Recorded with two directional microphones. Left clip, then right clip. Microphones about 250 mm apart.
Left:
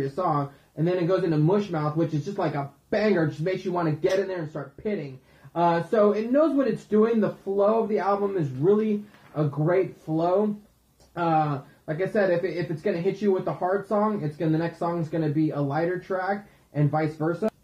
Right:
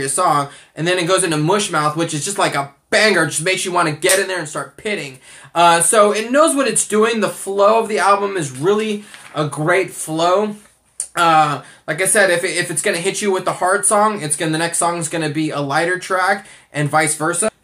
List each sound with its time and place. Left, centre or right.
0.1 s speech: centre
6.6 s speech: centre
7.1 s speech: centre
13.2 s speech: right